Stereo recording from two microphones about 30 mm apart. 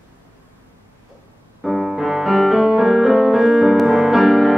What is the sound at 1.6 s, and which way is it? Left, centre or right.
Piano, right.